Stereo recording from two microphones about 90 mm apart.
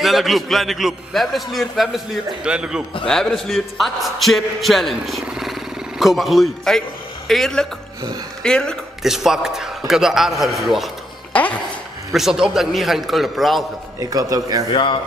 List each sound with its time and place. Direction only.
0.0 s a man's voice: centre (ahead or behind)
3.1 s a man's voice: 5° left (ahead or behind)
9.0 s a man's voice: 5° right (ahead or behind)
12.1 s a man's voice: 5° right (ahead or behind)
13.9 s a man's voice: 40° right (ahead or behind)
14.7 s speech: 65° left (ahead or behind)